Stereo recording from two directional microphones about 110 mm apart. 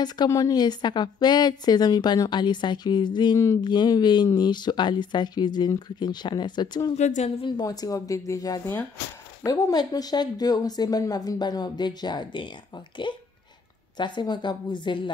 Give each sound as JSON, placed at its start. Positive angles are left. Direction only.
{"t": 0.3, "sound": "a woman's voice", "side_deg": 35}
{"t": 6.9, "sound": "speech", "side_deg": 90}
{"t": 7.4, "sound": "a woman's voice", "side_deg": 40}